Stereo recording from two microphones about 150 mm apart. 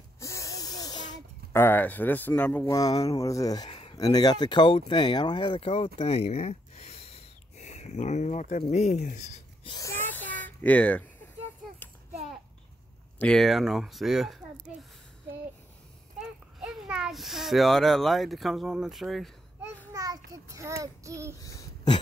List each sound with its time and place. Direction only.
0.2 s hiss: 20° left (ahead or behind)
1.5 s speech: 15° left (ahead or behind)
2.7 s speech: 20° left (ahead or behind)
3.7 s a sound: 40° left (ahead or behind)
4.0 s speech: 25° left (ahead or behind); by 9.4 s 50° left (ahead or behind)
9.7 s a sound: 20° left (ahead or behind)
13.2 s speech: centre (ahead or behind)
16.2 s a child's voice: centre (ahead or behind)
19.9 s child singing: 20° right (ahead or behind)
21.4 s throat clearing: 25° left (ahead or behind)